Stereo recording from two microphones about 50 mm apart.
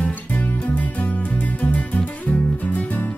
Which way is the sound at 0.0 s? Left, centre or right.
Left.